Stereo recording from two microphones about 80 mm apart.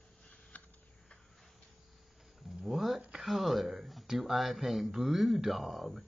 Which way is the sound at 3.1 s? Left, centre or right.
Centre.